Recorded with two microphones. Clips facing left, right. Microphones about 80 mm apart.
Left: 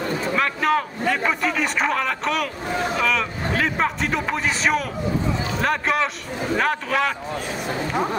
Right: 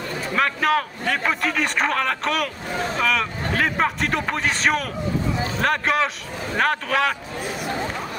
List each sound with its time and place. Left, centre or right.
0.4 s a man's voice: centre
7.6 s speech: left